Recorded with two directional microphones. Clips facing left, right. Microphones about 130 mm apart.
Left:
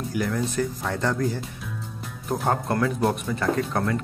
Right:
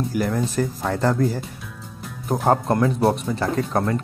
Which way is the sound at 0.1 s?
40° right (ahead or behind).